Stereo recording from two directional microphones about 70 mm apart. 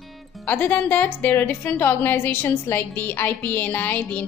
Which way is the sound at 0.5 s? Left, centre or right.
Left.